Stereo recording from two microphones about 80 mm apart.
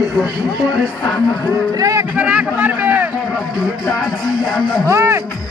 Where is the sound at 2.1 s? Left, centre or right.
Centre.